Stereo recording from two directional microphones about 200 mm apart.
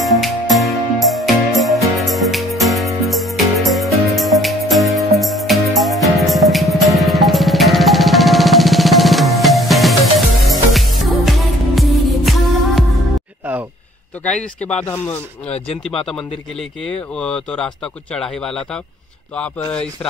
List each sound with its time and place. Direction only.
0.0 s music: centre (ahead or behind)
15.5 s speech: 30° left (ahead or behind)
17.2 s speech: 5° left (ahead or behind)